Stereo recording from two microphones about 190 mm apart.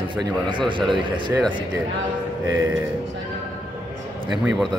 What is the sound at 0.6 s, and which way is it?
Speech, 25° right (ahead or behind).